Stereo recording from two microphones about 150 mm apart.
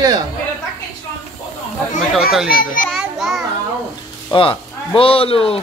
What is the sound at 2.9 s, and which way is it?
Children playing, centre (ahead or behind).